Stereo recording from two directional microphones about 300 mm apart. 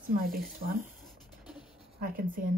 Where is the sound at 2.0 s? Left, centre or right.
Right.